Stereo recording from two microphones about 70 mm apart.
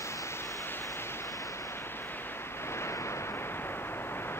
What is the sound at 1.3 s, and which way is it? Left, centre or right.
Waves, left.